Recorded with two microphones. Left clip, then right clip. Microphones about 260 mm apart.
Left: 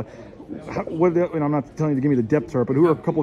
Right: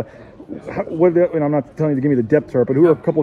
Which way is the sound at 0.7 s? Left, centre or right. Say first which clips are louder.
Right 5 dB; centre.